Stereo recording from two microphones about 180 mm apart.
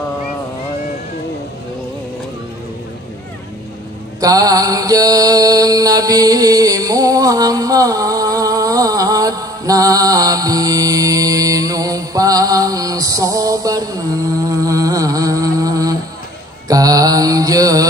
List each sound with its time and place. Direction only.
4.2 s mantra: 20° right (ahead or behind)
14.6 s a sound: 20° right (ahead or behind)
16.6 s mantra: 20° right (ahead or behind)